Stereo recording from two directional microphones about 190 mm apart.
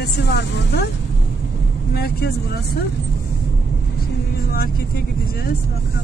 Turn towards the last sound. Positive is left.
turn(degrees=55)  # may be behind; listen again after turning